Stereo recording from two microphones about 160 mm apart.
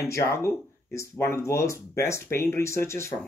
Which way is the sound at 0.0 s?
15° left (ahead or behind).